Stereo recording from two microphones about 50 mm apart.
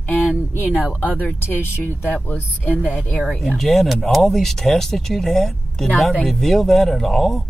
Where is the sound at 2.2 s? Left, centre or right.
Left.